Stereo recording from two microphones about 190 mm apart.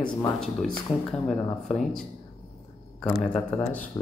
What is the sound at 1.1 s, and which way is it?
Speech, centre (ahead or behind).